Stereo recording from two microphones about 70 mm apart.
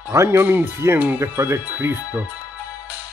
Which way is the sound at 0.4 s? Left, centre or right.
Right.